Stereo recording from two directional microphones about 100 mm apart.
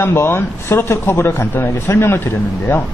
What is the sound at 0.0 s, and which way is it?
Speech, 25° left (ahead or behind).